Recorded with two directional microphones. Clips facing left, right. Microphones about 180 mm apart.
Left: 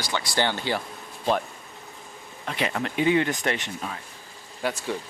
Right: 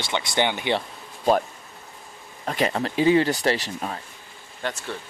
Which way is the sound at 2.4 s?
40° right (ahead or behind).